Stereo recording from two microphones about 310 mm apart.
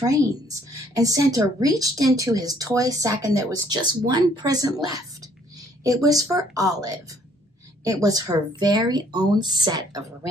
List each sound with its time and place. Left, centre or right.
0.0 s a woman's voice: centre
6.0 s a woman's voice: centre